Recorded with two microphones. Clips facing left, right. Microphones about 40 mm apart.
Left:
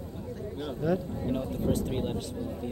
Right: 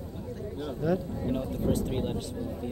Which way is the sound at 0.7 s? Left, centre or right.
Left.